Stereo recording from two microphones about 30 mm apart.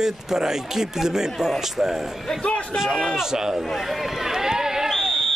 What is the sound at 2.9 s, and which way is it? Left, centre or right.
Speech, centre.